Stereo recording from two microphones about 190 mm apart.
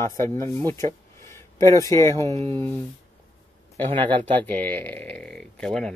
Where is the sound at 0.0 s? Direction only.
15° left (ahead or behind).